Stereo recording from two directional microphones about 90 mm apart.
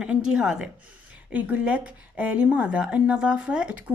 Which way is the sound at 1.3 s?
20° right (ahead or behind).